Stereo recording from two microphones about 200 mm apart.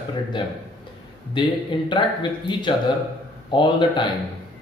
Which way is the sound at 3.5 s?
25° left (ahead or behind).